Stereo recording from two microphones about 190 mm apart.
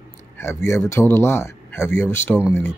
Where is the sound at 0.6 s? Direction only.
15° left (ahead or behind).